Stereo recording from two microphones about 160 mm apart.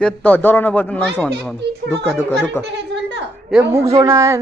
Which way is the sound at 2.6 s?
90° right.